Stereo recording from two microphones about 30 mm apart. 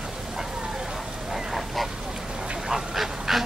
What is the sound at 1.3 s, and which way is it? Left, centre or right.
Goose, centre.